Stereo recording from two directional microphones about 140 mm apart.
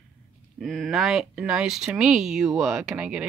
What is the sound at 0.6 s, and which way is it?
Speech, centre (ahead or behind).